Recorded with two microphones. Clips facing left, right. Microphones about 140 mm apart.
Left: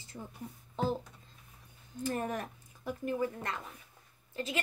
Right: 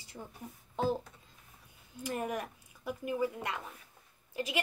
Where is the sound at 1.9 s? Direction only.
10° right (ahead or behind).